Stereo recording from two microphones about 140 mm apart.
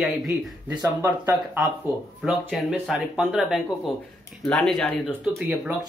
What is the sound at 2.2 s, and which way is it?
Speech, centre (ahead or behind).